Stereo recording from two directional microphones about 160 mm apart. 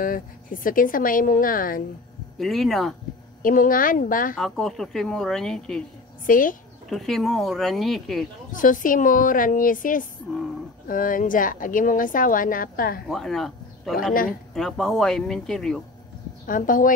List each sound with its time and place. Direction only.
0.0 s a woman's voice: 60° left (ahead or behind)
2.3 s a woman's voice: centre (ahead or behind)
3.4 s a woman's voice: 60° left (ahead or behind)
4.4 s a woman's voice: centre (ahead or behind)
6.2 s a woman's voice: 60° left (ahead or behind)
6.9 s a woman's voice: centre (ahead or behind)
8.5 s a woman's voice: 55° left (ahead or behind)
13.1 s a woman's voice: centre (ahead or behind)
16.4 s a woman's voice: 55° left (ahead or behind)